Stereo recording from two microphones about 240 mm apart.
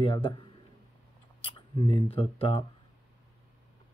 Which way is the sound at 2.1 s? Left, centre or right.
Left.